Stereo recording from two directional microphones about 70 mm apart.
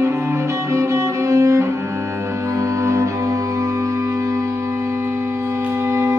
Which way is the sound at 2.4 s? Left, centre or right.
Right.